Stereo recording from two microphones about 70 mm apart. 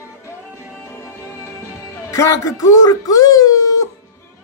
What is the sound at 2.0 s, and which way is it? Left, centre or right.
Speech, left.